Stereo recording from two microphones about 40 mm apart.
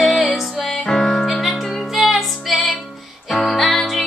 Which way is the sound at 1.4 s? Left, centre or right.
Centre.